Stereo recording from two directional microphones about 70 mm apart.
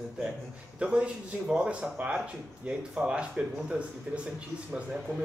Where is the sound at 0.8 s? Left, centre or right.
Centre.